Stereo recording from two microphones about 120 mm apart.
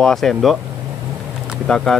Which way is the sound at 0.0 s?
5° left (ahead or behind).